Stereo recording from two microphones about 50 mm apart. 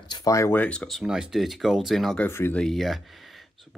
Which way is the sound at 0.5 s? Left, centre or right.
Left.